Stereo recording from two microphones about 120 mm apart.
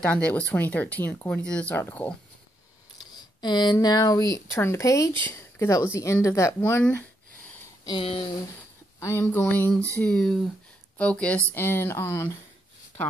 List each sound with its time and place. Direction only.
0.0 s speech: 10° left (ahead or behind)
3.2 s a sound: 35° left (ahead or behind)
3.7 s speech: 30° left (ahead or behind); by 7.0 s 15° left (ahead or behind)
7.8 s speech: 40° left (ahead or behind)
8.1 s speech: 55° left (ahead or behind)
9.0 s speech: 20° left (ahead or behind)